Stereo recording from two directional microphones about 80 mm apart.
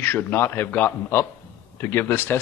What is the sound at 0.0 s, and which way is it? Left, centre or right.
A man's voice, left.